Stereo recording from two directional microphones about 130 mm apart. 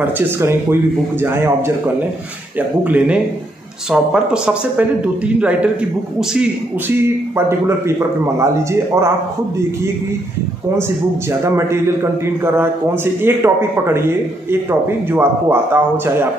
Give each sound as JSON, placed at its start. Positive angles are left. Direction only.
{"t": 0.0, "sound": "a man's voice", "side_deg": -20}
{"t": 2.8, "sound": "a man's voice", "side_deg": -10}
{"t": 7.0, "sound": "a man's voice", "side_deg": -20}
{"t": 11.4, "sound": "a man's voice", "side_deg": -20}